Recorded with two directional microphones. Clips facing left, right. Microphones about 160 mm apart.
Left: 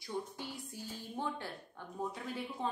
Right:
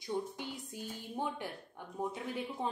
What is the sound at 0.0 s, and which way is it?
A woman's voice, 20° right (ahead or behind).